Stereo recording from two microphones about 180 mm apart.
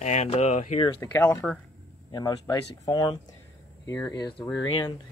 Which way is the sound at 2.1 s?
20° left (ahead or behind).